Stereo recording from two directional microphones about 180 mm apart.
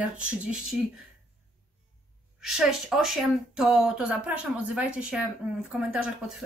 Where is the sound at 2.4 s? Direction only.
Centre (ahead or behind).